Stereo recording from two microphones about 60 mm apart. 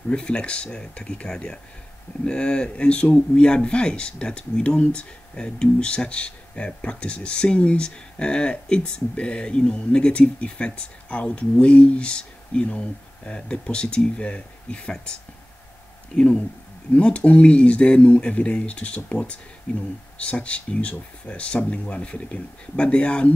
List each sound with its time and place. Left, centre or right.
0.1 s speech: centre